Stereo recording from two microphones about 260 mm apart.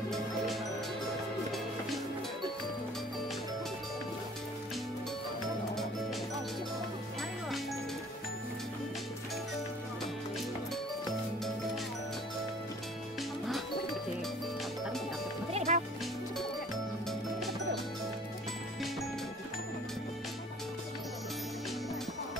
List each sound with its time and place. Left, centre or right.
15.7 s music: right